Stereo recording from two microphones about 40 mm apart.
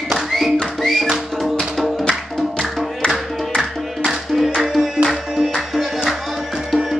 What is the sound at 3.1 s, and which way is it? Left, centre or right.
Music, centre.